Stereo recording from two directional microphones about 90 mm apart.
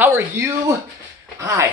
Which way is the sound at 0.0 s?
30° right (ahead or behind).